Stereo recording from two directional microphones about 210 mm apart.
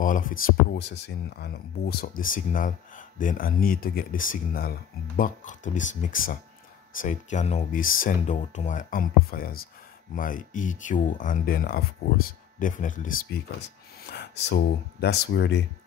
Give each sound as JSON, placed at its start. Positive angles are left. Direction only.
{"t": 0.0, "sound": "speech", "side_deg": 40}